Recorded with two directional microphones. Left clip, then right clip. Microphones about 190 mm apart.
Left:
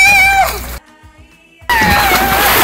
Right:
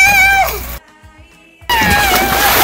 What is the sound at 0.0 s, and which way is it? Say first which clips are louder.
Music: left 1 dB; 10° right (ahead or behind).